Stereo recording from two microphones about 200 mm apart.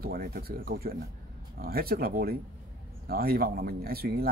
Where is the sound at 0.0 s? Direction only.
50° right (ahead or behind).